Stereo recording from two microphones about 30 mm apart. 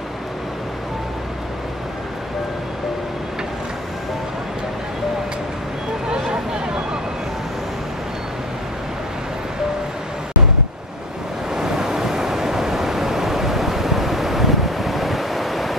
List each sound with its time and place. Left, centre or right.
6.0 s vehicle: right
11.5 s waves: centre